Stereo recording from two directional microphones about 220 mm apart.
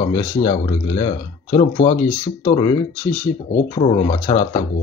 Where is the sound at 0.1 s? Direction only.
20° left (ahead or behind).